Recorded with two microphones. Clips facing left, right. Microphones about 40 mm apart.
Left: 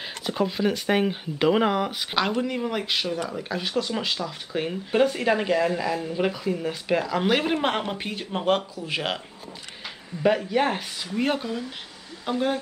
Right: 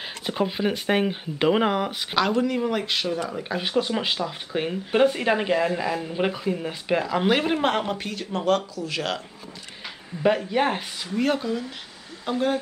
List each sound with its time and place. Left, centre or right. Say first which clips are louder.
0.0 s speech: even; centre
3.3 s speech: right 1 dB; centre
7.9 s speech: right 1 dB; centre
9.8 s speech: even; centre
11.1 s speech: right 2 dB; centre